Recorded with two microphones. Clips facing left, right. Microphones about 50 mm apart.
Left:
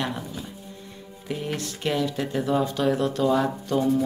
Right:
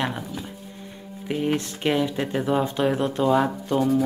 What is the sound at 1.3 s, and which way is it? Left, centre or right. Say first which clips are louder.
Speech: right 5 dB; right.